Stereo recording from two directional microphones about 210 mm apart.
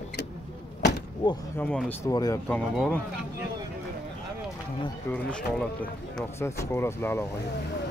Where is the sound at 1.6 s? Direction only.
5° left (ahead or behind).